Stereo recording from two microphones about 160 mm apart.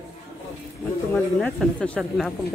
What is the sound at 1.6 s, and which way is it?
Speech, 5° left (ahead or behind).